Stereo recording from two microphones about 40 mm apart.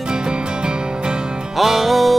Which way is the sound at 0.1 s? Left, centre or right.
Right.